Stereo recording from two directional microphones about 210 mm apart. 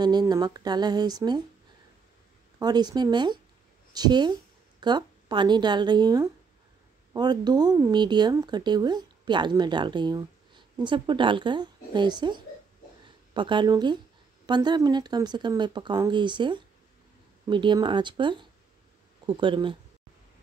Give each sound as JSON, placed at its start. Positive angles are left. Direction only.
{"t": 0.0, "sound": "speech", "side_deg": -20}
{"t": 2.6, "sound": "a woman's voice", "side_deg": -20}